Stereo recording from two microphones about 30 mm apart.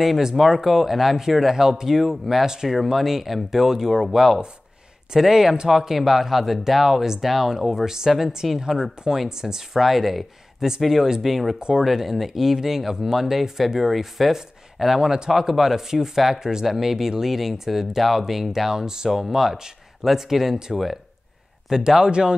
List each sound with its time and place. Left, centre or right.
0.2 s speech: centre
2.8 s speech: centre
5.1 s speech: centre
9.8 s speech: centre; by 15.3 s right
15.3 s speech: centre
18.7 s speech: centre
19.0 s speech: centre
21.6 s speech: centre